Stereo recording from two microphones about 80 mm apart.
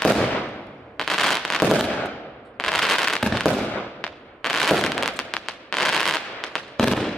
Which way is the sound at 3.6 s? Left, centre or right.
Left.